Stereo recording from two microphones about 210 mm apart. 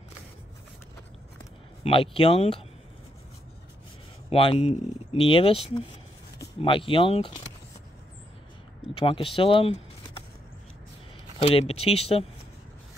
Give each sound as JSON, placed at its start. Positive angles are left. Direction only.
{"t": 1.8, "sound": "speech", "side_deg": 25}
{"t": 4.3, "sound": "speech", "side_deg": 25}
{"t": 8.9, "sound": "speech", "side_deg": 25}
{"t": 11.4, "sound": "speech", "side_deg": 30}